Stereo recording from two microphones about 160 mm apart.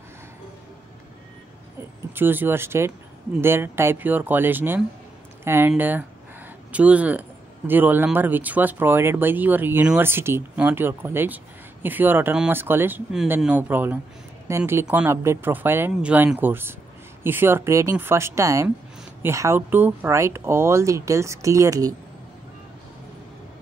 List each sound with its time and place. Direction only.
2.1 s speech: 15° right (ahead or behind)